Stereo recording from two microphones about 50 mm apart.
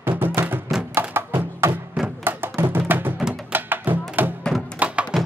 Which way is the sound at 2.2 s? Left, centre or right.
Right.